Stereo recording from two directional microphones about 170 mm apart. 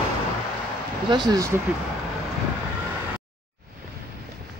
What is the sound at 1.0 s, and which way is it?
Speech, 25° right (ahead or behind).